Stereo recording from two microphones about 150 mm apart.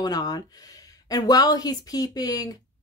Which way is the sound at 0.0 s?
25° left (ahead or behind).